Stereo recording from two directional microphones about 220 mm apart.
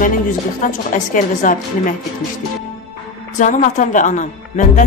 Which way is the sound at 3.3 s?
35° left (ahead or behind).